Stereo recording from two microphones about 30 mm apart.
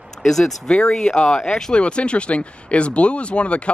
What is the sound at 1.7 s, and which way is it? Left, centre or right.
Speech, left.